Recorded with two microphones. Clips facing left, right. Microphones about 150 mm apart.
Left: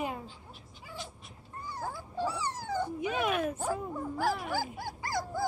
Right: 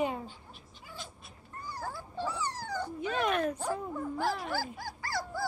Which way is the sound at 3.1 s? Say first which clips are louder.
Right 3 dB; 5° left (ahead or behind).